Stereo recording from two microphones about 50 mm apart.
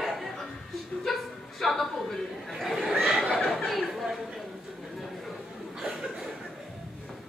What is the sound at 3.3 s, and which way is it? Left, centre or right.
Chatter, centre.